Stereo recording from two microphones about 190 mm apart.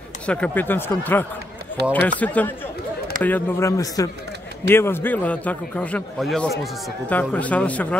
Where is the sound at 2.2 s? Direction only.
10° left (ahead or behind).